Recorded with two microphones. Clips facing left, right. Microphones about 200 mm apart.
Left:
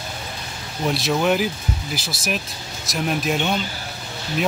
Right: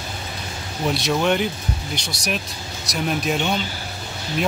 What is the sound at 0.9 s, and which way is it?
Speech, centre (ahead or behind).